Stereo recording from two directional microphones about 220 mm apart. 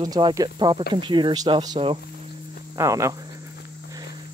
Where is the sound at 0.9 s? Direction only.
20° right (ahead or behind).